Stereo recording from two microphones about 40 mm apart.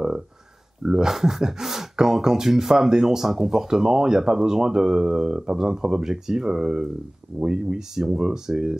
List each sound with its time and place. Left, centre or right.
0.8 s speech: centre